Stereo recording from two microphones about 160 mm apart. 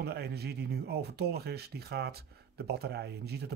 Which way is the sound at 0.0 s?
90° right.